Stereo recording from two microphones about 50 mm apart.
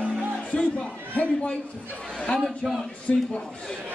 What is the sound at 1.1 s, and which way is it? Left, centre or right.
Speech, left.